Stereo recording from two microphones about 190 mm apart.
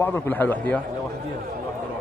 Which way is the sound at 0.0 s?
10° left (ahead or behind).